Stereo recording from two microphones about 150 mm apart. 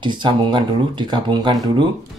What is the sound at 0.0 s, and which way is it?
Speech, 30° right (ahead or behind).